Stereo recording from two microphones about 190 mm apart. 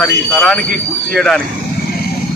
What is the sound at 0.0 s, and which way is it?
Speech, 5° left (ahead or behind).